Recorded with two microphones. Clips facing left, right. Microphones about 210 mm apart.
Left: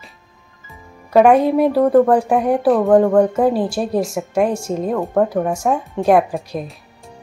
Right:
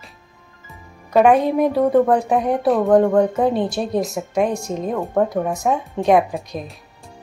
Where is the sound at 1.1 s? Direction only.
5° left (ahead or behind).